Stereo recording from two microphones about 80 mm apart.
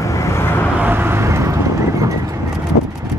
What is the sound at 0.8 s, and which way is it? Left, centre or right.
Vehicle, right.